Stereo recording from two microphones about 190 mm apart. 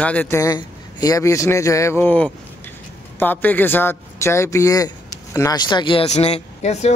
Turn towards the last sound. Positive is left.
turn(degrees=35)  # may be behind; listen again after turning